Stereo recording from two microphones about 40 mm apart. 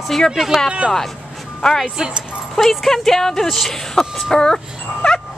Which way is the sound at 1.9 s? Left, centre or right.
Right.